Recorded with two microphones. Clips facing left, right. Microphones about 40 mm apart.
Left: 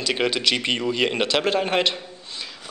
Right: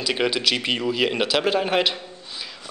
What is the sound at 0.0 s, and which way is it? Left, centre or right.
Speech, centre.